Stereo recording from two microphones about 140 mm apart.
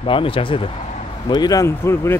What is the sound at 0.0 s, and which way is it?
Speech, 40° left (ahead or behind).